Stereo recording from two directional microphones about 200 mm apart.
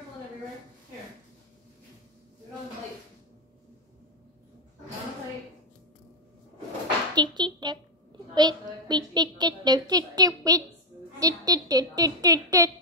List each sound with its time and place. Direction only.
7.2 s a woman's voice: 20° right (ahead or behind)